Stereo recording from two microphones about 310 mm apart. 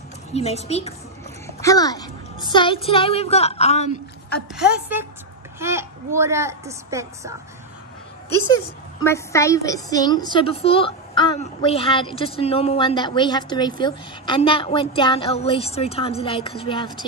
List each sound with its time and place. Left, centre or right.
0.3 s a woman's voice: left
4.6 s a woman's voice: centre
9.0 s a woman's voice: centre